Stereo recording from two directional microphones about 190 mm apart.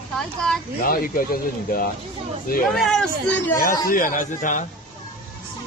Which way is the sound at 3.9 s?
45° left (ahead or behind).